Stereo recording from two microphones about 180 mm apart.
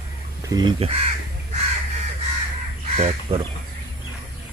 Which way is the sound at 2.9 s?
30° right (ahead or behind).